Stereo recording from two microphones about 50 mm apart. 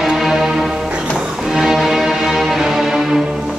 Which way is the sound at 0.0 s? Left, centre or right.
Centre.